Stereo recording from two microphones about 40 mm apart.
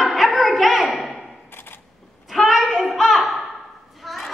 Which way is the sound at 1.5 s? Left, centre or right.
Left.